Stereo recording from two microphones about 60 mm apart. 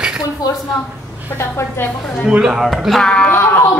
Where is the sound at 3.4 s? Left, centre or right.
Left.